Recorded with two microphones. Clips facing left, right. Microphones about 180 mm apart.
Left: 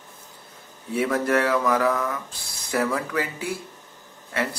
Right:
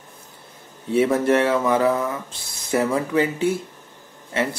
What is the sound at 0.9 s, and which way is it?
Speech, 25° right (ahead or behind).